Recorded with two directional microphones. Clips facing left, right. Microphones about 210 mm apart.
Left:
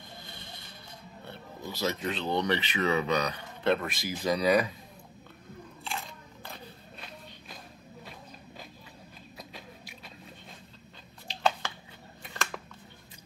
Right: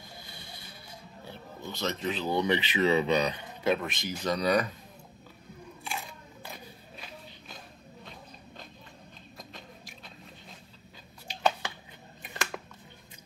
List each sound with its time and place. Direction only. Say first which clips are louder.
1.2 s speech: even; centre (ahead or behind); by 3.5 s 20° right (ahead or behind)
3.6 s speech: left 1 dB; centre (ahead or behind)
5.9 s a sound: even; 10° right (ahead or behind); by 8.6 s 5° left (ahead or behind)
9.4 s biting: left 1 dB; 5° left (ahead or behind)
12.2 s scissors: right 1 dB; 15° right (ahead or behind)